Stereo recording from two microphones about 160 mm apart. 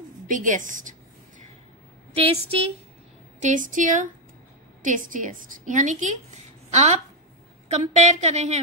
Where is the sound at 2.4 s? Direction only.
40° right (ahead or behind).